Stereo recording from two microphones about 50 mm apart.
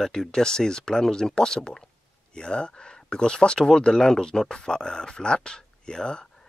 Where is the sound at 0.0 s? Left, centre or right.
Centre.